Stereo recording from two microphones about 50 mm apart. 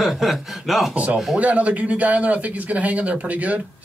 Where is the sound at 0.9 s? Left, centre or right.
Right.